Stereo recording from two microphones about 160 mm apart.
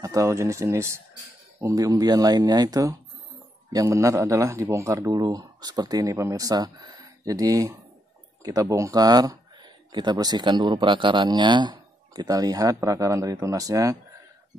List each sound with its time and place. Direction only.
0.0 s speech: 20° right (ahead or behind)